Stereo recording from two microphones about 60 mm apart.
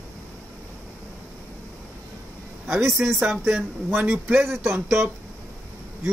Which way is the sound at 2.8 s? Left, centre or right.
Centre.